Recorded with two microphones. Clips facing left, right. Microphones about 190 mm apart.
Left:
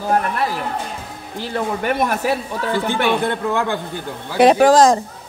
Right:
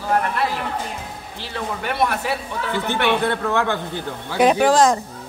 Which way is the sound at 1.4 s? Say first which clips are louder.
Left 6 dB; 45° left (ahead or behind).